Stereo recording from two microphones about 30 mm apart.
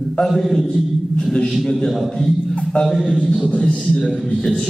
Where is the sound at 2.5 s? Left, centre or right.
Left.